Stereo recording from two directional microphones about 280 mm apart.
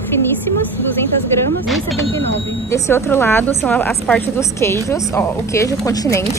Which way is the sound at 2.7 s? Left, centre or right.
Centre.